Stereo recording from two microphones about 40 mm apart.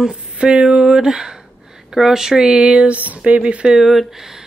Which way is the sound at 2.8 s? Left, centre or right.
Right.